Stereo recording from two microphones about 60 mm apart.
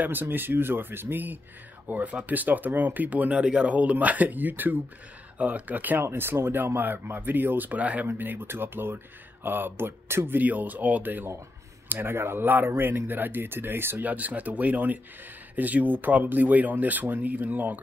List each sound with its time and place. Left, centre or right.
0.0 s speech: right
14.0 s speech: right